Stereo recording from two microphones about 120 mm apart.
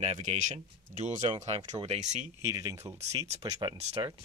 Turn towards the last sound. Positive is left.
turn(degrees=-35)  # may be behind; listen again after turning